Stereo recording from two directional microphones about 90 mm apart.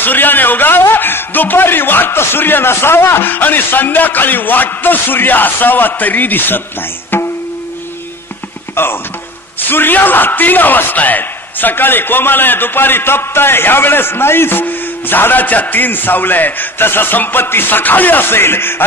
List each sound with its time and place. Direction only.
0.0 s a man's voice: 20° left (ahead or behind)
8.8 s a man's voice: 25° left (ahead or behind)